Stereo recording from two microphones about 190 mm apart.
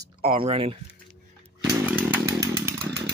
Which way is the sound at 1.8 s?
10° right (ahead or behind).